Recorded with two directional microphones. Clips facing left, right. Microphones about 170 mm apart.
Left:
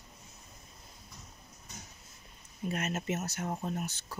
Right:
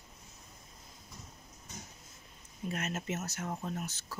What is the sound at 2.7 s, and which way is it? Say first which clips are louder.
Speech: left 3 dB; centre (ahead or behind).